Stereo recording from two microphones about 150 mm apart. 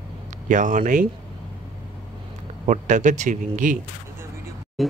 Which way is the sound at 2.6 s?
55° right (ahead or behind).